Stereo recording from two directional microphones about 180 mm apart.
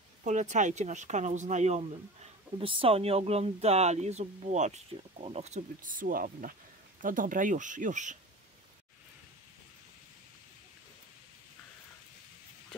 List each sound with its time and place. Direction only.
0.2 s speech: 40° right (ahead or behind)